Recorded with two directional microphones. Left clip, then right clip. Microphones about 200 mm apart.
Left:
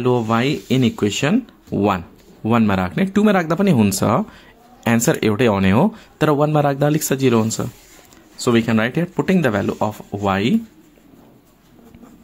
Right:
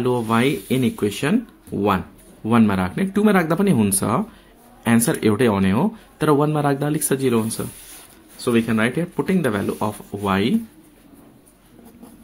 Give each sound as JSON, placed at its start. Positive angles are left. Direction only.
{"t": 0.0, "sound": "speech", "side_deg": 20}